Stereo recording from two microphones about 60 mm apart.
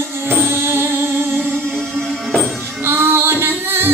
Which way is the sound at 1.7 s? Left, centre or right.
Centre.